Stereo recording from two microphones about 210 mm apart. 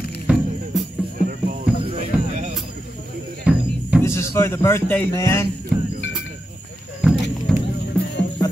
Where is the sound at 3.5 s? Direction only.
5° right (ahead or behind).